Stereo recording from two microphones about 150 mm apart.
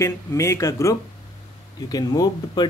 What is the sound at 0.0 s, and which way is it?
A man's voice, 20° left (ahead or behind).